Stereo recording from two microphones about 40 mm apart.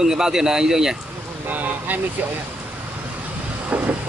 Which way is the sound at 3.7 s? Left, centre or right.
Right.